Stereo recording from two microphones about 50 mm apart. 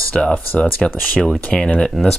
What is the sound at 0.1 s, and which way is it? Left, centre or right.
Speech, left.